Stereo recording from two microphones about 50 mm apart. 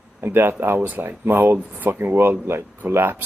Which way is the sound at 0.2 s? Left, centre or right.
Right.